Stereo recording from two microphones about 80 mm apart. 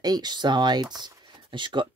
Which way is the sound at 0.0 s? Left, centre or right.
Right.